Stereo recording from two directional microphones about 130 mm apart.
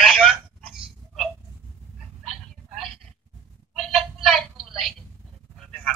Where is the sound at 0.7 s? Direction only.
5° right (ahead or behind).